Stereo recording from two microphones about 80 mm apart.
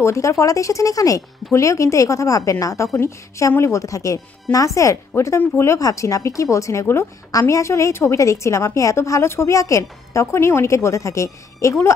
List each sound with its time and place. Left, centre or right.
0.0 s a woman's voice: left